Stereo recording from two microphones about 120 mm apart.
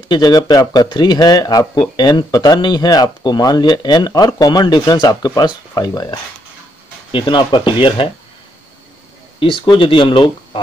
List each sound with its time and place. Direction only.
0.1 s speech: 35° left (ahead or behind)
7.1 s speech: 45° left (ahead or behind)
9.7 s speech: 45° left (ahead or behind)